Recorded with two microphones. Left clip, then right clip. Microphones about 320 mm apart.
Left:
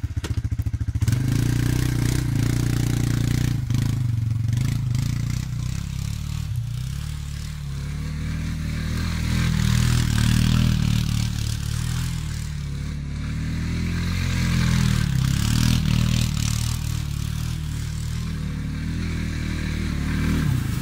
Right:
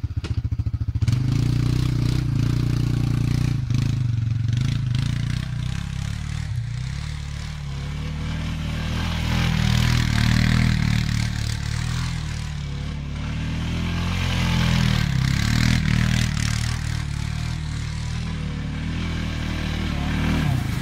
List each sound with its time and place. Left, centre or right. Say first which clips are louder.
1.0 s vehicle: left 1 dB; left
8.9 s vehicle: right 3 dB; centre
14.2 s vehicle: right 3 dB; centre
19.5 s motorcycle: right 2 dB; centre